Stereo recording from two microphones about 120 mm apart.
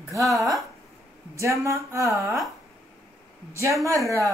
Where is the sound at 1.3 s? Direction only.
25° right (ahead or behind).